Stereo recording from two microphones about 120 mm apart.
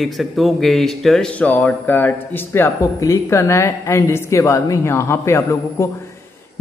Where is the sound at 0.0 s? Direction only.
Centre (ahead or behind).